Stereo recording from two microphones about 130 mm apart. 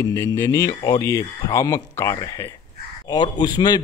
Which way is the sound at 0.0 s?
20° left (ahead or behind).